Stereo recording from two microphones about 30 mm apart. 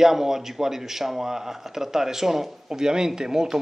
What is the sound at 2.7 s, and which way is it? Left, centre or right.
Speech, right.